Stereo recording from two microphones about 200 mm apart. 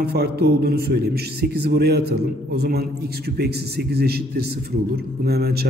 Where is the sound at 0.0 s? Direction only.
55° right (ahead or behind).